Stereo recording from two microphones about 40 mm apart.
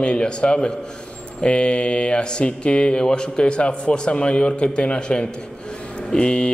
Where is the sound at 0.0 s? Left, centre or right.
Left.